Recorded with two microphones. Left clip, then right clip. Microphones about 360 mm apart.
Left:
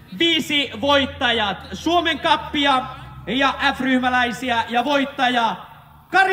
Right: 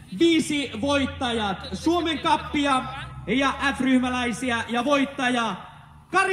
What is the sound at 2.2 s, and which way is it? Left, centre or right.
A man's voice, left.